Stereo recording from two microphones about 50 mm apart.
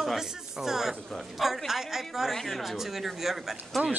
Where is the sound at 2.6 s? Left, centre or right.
Centre.